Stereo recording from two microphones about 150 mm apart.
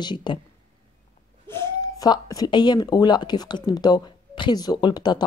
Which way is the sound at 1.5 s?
15° left (ahead or behind).